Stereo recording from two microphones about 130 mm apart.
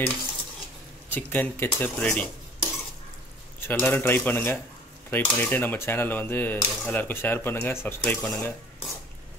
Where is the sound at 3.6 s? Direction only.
15° left (ahead or behind).